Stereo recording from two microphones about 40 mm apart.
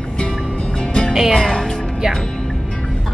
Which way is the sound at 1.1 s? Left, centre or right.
Centre.